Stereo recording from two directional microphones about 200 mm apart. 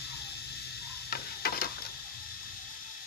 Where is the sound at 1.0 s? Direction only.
50° left (ahead or behind).